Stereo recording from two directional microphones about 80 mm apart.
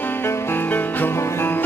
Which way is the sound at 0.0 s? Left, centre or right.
Left.